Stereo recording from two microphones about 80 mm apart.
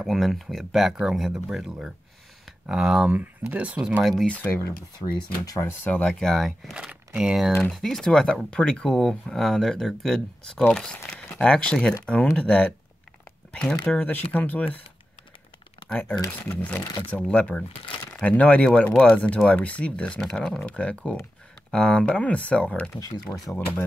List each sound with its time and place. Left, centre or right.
0.0 s speech: centre
3.1 s speech: centre
4.0 s speech: centre
4.3 s speech: left
4.9 s speech: left
5.9 s speech: centre
6.1 s speech: centre
6.7 s speech: centre
7.7 s speech: centre
14.0 s speech: left
15.9 s speech: left
23.3 s speech: left